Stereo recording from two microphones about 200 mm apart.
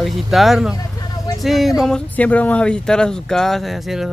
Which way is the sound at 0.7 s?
20° left (ahead or behind).